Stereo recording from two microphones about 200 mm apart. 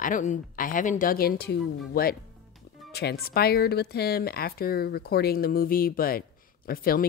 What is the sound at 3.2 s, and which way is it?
A woman's voice, 50° left (ahead or behind).